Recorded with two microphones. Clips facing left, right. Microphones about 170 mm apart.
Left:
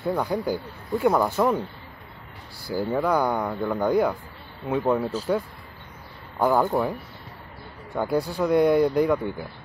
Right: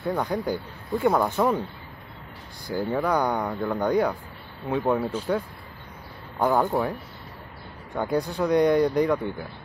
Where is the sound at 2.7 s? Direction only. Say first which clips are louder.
Left 1 dB; 5° left (ahead or behind).